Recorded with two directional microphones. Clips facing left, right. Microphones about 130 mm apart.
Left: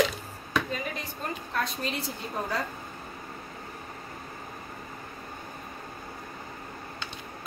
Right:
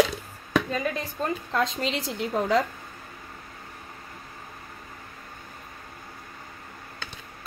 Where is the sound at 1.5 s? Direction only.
90° right.